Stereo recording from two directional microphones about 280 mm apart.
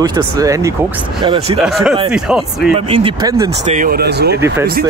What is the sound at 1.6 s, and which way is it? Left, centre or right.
Speech, centre.